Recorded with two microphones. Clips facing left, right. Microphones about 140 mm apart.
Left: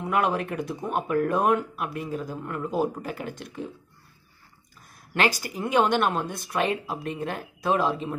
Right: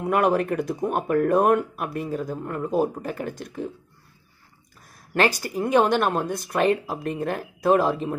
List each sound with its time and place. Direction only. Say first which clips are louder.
0.0 s speech: right 4 dB; 50° right (ahead or behind)
5.6 s speech: right 3 dB; 40° right (ahead or behind)